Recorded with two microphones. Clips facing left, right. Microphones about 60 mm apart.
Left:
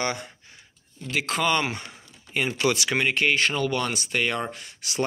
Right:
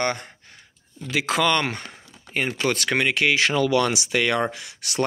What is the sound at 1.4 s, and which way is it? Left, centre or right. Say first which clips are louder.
Speech: even; right.